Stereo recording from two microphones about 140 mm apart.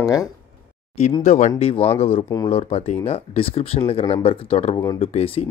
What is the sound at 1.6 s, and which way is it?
Speech, 45° left (ahead or behind).